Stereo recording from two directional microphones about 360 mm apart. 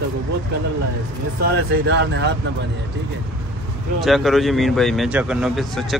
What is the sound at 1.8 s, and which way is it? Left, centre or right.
Speech, right.